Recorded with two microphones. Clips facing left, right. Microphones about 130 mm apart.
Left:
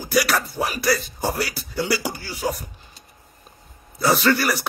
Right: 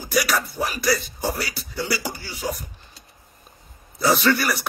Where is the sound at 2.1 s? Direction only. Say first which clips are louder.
Left 2 dB; 45° left (ahead or behind).